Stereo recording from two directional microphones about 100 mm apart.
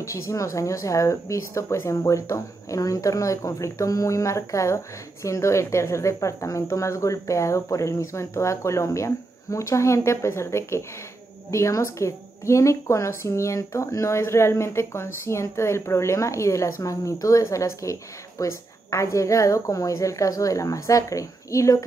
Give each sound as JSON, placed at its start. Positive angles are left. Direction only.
{"t": 0.0, "sound": "a woman's voice", "side_deg": 30}